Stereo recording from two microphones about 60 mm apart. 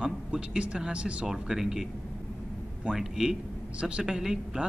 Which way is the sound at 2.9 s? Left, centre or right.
Centre.